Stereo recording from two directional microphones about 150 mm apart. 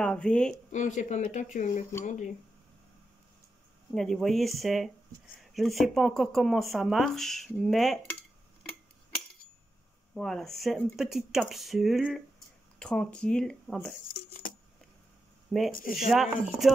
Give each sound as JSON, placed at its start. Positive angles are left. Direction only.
{"t": 0.0, "sound": "speech", "side_deg": 5}
{"t": 0.7, "sound": "speech", "side_deg": 55}
{"t": 3.9, "sound": "speech", "side_deg": 5}
{"t": 10.1, "sound": "speech", "side_deg": 0}
{"t": 14.1, "sound": "a sound", "side_deg": 70}
{"t": 15.5, "sound": "speech", "side_deg": 0}